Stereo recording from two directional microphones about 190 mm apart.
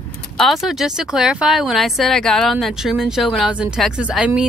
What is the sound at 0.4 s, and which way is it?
Speech, centre (ahead or behind).